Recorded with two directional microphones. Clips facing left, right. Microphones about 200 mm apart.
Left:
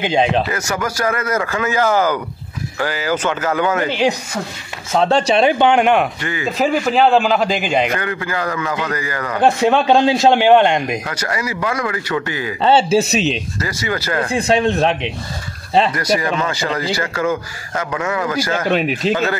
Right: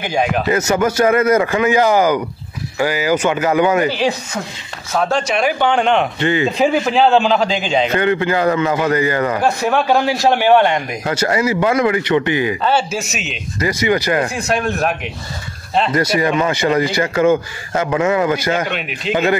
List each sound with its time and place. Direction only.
0.0 s a man's voice: 25° left (ahead or behind)
0.5 s speech: 25° right (ahead or behind)
4.9 s a man's voice: 30° left (ahead or behind)
5.7 s speech: 10° left (ahead or behind)
6.1 s speech: 25° right (ahead or behind)
6.6 s a man's voice: centre (ahead or behind)
7.9 s speech: 25° right (ahead or behind)
9.4 s a man's voice: 20° left (ahead or behind)
11.1 s speech: 25° right (ahead or behind)
12.6 s speech: 30° left (ahead or behind)
13.6 s speech: 20° right (ahead or behind)
14.3 s a man's voice: 30° left (ahead or behind)
15.9 s speech: 25° right (ahead or behind)
18.7 s speech: 40° left (ahead or behind)